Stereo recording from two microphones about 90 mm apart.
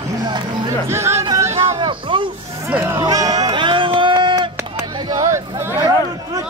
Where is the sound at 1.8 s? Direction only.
65° right (ahead or behind).